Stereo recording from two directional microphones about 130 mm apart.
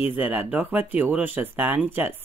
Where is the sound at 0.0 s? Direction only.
10° right (ahead or behind).